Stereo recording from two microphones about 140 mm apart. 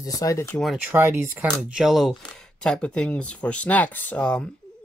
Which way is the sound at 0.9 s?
20° right (ahead or behind).